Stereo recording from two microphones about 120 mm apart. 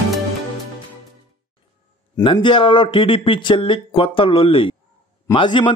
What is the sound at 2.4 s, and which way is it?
A man's voice, 45° left (ahead or behind).